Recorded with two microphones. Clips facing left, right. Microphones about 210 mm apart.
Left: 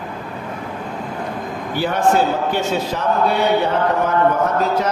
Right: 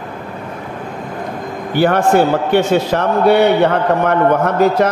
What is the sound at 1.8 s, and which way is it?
A man's voice, 65° right (ahead or behind).